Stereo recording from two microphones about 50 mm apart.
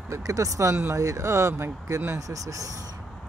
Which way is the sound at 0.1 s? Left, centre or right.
Right.